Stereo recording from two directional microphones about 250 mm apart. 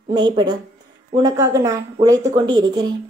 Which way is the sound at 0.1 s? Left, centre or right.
Centre.